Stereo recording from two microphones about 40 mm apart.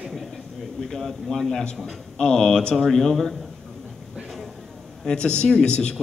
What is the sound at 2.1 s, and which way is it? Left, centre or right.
Speech, centre.